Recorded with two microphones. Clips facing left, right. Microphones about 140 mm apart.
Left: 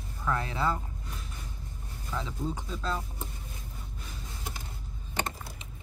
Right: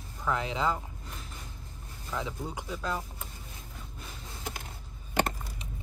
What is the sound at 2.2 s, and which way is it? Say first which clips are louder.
Speech: left 2 dB; 15° right (ahead or behind).